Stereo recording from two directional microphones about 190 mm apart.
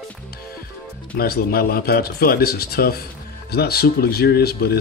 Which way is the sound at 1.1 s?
55° left (ahead or behind).